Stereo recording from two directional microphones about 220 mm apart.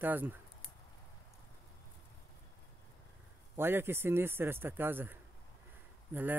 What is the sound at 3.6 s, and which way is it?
Speech, 10° right (ahead or behind).